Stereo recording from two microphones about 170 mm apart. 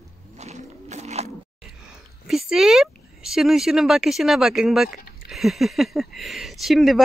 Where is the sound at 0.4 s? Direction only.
40° right (ahead or behind).